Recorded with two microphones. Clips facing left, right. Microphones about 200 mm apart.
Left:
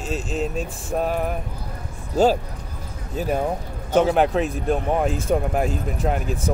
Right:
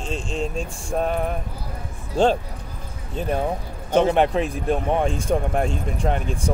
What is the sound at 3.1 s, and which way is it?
Speech, 5° left (ahead or behind).